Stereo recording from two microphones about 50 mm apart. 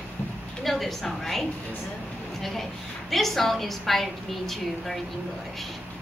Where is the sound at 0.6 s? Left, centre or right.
Centre.